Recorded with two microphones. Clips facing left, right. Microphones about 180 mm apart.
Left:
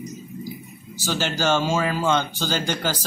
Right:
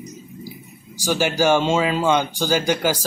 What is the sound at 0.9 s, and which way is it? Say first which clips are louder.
Speech: right 5 dB; 10° right (ahead or behind).